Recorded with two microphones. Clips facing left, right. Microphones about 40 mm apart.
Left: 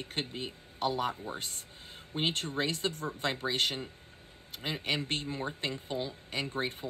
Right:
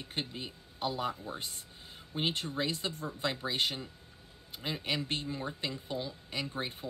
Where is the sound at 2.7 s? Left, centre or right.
Left.